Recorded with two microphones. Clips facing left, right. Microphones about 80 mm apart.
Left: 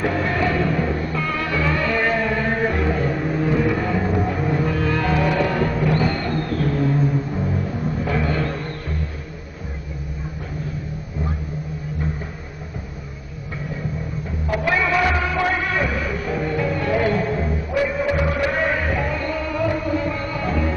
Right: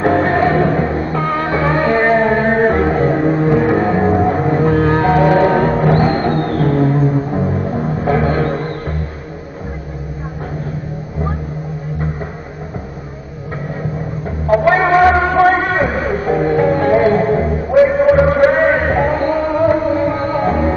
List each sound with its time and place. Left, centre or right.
0.0 s music: right
14.5 s music: right